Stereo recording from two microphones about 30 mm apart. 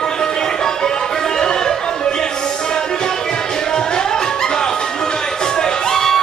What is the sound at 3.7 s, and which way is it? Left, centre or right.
Music, left.